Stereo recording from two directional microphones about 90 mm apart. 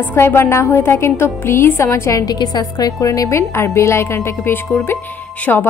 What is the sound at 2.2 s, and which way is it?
A woman's voice, 50° left (ahead or behind).